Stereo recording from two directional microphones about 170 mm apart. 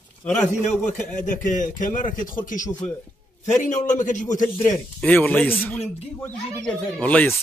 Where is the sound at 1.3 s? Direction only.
50° left (ahead or behind).